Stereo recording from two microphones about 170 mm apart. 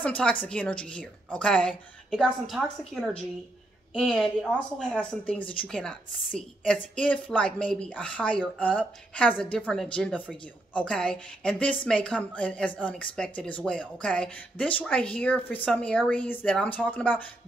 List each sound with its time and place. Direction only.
0.0 s a woman's voice: 10° left (ahead or behind)